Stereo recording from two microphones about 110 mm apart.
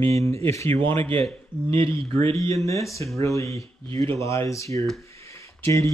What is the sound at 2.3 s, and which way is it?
Speech, 30° left (ahead or behind).